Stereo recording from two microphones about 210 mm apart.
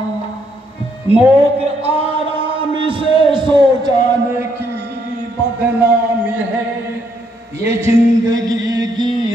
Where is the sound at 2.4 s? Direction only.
25° right (ahead or behind).